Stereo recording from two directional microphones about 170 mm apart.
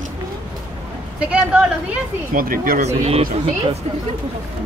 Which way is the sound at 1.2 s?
5° right (ahead or behind).